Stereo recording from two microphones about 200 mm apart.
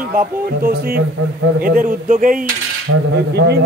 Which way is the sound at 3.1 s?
60° right (ahead or behind).